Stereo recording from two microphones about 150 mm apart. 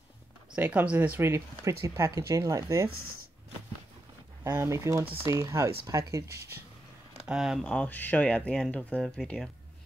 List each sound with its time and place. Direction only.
0.6 s speech: 10° right (ahead or behind)
4.4 s speech: 15° right (ahead or behind)
7.2 s speech: 5° right (ahead or behind)